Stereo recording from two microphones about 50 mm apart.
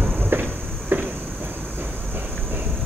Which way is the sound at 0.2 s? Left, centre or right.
Right.